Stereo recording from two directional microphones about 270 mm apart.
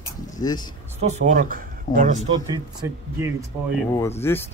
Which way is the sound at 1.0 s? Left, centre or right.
Right.